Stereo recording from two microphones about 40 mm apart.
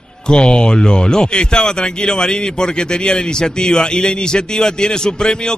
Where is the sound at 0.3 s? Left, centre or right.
Left.